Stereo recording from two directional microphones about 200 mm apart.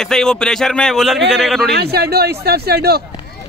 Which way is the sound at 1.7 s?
50° right (ahead or behind).